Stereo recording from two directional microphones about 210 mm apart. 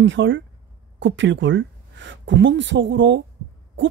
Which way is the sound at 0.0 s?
60° right (ahead or behind).